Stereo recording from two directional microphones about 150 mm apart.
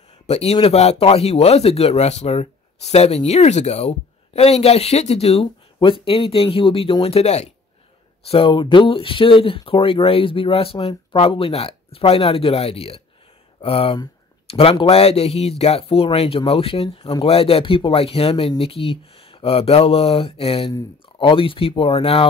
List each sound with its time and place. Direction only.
0.3 s speech: 40° left (ahead or behind)